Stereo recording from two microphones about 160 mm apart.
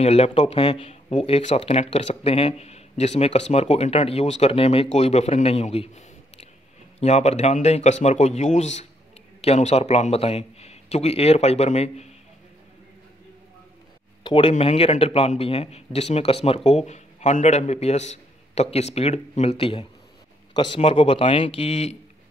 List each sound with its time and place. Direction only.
0.0 s speech: 40° left (ahead or behind)
14.2 s speech: 35° left (ahead or behind)